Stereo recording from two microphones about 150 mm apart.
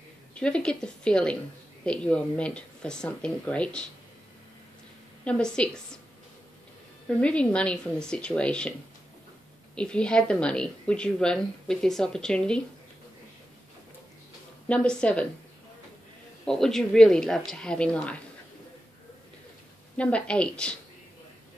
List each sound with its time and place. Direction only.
0.3 s speech: 5° left (ahead or behind)
5.2 s a woman's voice: 5° left (ahead or behind)
7.1 s speech: 10° left (ahead or behind)
9.8 s a woman's voice: 5° left (ahead or behind)
14.7 s speech: 5° left (ahead or behind)
16.4 s a woman's voice: 5° left (ahead or behind)
20.0 s speech: 10° left (ahead or behind)